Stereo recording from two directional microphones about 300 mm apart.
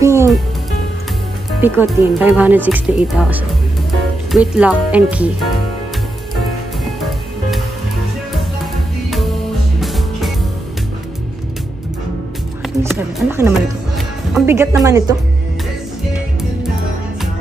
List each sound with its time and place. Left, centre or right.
0.0 s music: centre
1.6 s speech: centre
9.8 s music: centre
12.9 s speech: centre